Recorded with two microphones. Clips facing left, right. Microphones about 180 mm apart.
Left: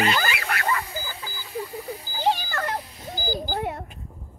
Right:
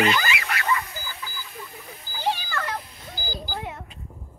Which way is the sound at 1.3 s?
35° left (ahead or behind).